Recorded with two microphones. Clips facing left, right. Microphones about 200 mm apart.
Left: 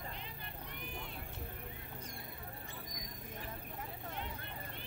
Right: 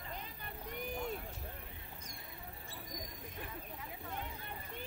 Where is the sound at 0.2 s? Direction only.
45° right (ahead or behind).